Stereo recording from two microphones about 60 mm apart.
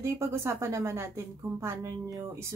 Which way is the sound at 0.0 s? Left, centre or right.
Right.